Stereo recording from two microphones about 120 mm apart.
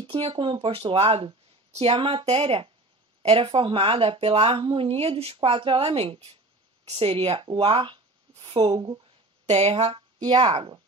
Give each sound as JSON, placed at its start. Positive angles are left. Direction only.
{"t": 0.0, "sound": "speech", "side_deg": -45}
{"t": 9.5, "sound": "speech", "side_deg": -60}